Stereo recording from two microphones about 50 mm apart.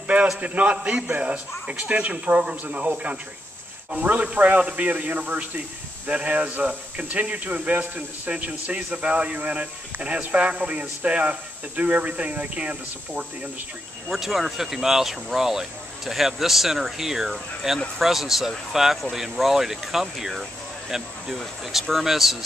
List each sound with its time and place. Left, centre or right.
0.4 s speech: right
14.0 s speech: centre